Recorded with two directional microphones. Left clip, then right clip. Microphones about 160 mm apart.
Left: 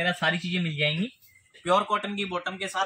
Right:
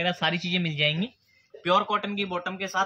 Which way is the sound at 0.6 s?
5° left (ahead or behind).